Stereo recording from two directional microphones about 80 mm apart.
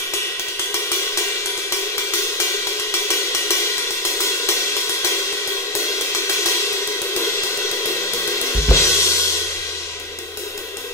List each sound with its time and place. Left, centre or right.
8.6 s music: left